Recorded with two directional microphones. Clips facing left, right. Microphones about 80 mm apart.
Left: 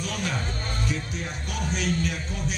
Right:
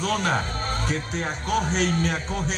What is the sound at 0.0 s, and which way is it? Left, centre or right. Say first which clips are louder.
Speech: right 6 dB; right.